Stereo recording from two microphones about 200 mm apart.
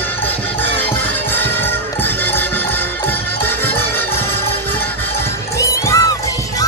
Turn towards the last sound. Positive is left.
turn(degrees=15)  # may be behind; listen again after turning